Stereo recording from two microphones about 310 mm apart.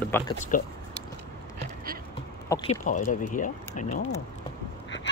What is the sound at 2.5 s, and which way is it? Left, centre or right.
Speech, centre.